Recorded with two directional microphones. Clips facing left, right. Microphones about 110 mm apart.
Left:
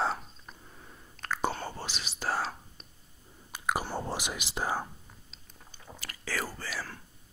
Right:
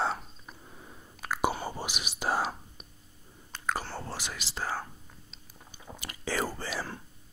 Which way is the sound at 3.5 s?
15° left (ahead or behind).